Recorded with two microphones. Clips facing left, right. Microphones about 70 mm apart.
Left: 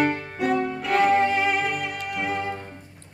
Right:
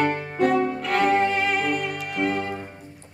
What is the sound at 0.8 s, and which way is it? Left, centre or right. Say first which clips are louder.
Music: left 1 dB; centre.